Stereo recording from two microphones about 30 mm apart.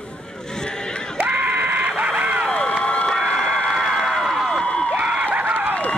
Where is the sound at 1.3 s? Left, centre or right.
Right.